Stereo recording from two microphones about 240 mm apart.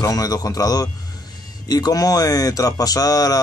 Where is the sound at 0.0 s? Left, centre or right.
Centre.